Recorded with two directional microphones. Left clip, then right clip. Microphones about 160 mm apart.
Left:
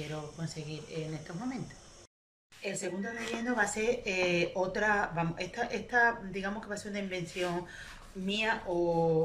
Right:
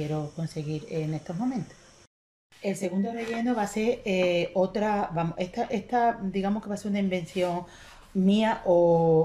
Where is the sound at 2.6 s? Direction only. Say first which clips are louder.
Right 6 dB; 30° right (ahead or behind).